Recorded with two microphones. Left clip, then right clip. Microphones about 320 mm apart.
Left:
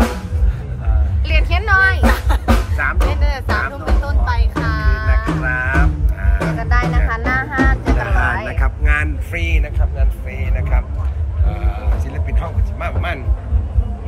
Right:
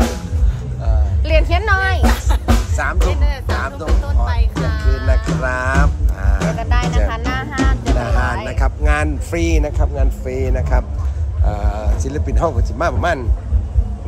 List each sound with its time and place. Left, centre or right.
1.2 s a sound: right
2.0 s music: centre
5.4 s music: centre
9.4 s speech: right
10.2 s vehicle: right
11.5 s music: centre